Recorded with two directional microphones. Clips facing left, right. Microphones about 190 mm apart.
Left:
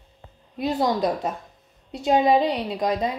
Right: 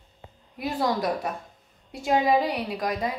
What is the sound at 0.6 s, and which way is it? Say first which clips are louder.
Speech: left 4 dB; 20° left (ahead or behind).